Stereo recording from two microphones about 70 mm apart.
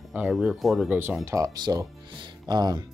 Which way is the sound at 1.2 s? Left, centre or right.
Right.